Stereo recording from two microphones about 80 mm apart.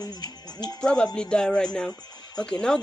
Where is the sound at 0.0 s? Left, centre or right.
Left.